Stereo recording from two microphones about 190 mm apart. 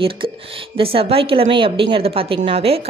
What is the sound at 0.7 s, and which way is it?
A woman's voice, 30° right (ahead or behind).